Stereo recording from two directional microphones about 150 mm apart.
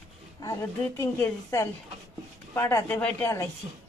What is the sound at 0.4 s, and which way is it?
A woman's voice, 20° left (ahead or behind).